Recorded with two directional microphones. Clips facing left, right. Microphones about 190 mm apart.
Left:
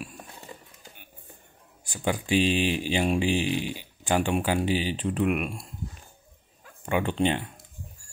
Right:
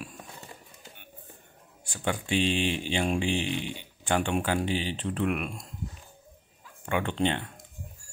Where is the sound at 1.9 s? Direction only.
15° left (ahead or behind).